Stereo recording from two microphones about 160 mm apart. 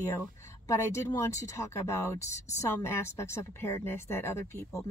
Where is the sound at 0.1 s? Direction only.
20° left (ahead or behind).